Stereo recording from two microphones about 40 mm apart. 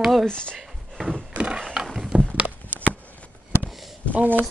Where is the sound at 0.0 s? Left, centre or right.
Centre.